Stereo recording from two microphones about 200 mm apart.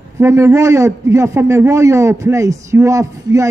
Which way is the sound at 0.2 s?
15° right (ahead or behind).